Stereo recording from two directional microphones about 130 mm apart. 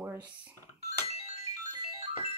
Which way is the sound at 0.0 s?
15° right (ahead or behind).